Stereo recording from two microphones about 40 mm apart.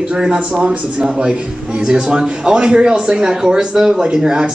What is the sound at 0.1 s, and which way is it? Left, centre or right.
A man's voice, right.